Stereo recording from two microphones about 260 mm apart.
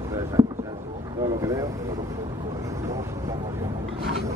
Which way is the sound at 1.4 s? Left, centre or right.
Centre.